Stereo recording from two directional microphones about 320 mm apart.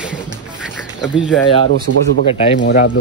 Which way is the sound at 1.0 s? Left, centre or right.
Centre.